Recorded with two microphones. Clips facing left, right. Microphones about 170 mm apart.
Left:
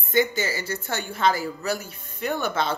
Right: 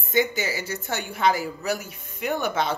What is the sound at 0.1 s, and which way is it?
Speech, 15° right (ahead or behind).